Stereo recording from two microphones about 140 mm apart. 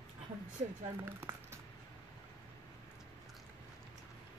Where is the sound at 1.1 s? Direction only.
15° right (ahead or behind).